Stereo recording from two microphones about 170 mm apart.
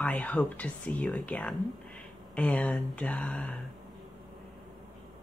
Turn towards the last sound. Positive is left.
turn(degrees=5)  # may be behind; listen again after turning